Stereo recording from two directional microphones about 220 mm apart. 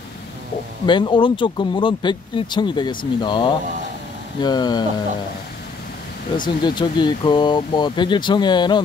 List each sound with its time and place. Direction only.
0.8 s speech: 20° left (ahead or behind)
6.6 s speech: 20° left (ahead or behind)